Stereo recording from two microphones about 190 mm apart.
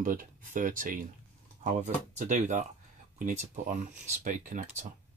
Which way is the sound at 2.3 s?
40° right (ahead or behind).